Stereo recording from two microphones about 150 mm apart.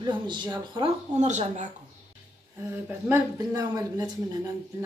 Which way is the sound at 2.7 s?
20° right (ahead or behind).